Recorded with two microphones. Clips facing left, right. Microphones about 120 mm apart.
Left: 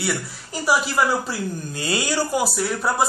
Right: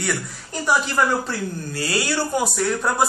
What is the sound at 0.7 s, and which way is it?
Speech, 5° left (ahead or behind).